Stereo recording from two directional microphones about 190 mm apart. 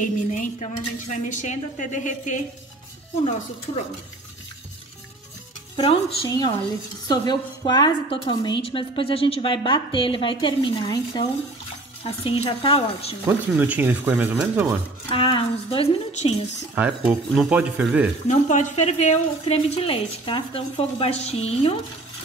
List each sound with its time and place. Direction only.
0.0 s a woman's voice: 40° left (ahead or behind)
5.8 s a woman's voice: 30° left (ahead or behind)
6.2 s a woman's voice: 20° left (ahead or behind)
13.2 s speech: 10° right (ahead or behind)
15.0 s a woman's voice: 25° left (ahead or behind)
16.7 s speech: 10° right (ahead or behind)
18.3 s a woman's voice: 40° left (ahead or behind)